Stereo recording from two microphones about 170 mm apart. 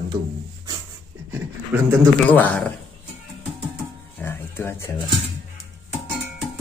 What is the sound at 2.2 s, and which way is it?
Speech, 10° left (ahead or behind).